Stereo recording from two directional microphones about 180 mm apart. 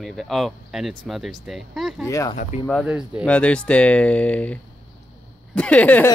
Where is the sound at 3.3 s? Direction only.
5° left (ahead or behind).